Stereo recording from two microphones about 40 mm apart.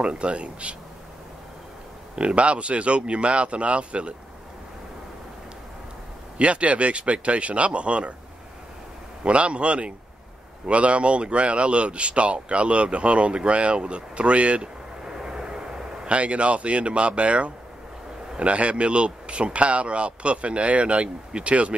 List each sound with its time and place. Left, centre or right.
0.0 s speech: right
2.1 s speech: right
6.3 s speech: right
9.2 s speech: right
15.0 s vehicle: centre
16.2 s speech: right